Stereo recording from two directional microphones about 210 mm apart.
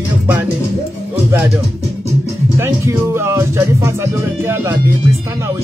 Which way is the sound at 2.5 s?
10° right (ahead or behind).